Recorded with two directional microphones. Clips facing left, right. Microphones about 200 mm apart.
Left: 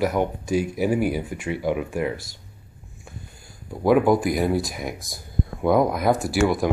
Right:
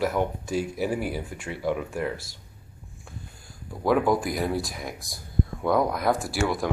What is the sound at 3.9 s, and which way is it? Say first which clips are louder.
Speech: left 5 dB; centre (ahead or behind).